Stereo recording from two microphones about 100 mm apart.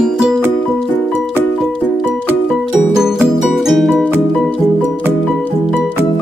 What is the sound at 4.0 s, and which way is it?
Music, 15° left (ahead or behind).